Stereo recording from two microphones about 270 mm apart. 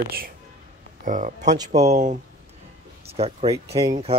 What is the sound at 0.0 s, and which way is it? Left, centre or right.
Speech, right.